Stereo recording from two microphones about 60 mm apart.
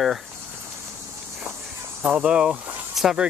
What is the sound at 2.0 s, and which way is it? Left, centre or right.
Speech, centre.